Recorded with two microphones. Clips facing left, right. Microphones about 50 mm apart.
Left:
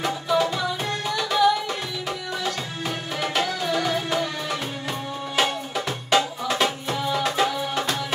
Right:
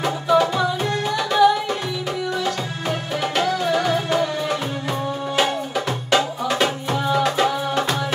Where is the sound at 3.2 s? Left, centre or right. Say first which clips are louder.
Right 3 dB; centre.